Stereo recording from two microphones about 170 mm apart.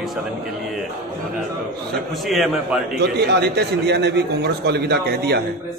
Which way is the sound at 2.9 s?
75° right (ahead or behind).